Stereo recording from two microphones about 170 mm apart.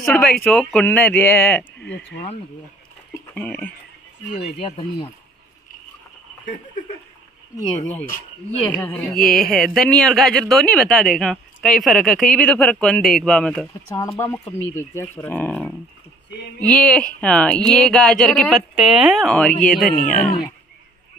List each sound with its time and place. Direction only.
0.0 s speech: 5° left (ahead or behind)
1.8 s speech: 90° left
3.3 s speech: 10° left (ahead or behind)
4.4 s speech: 35° left (ahead or behind)
7.5 s speech: 10° left (ahead or behind)
14.1 s speech: 15° left (ahead or behind)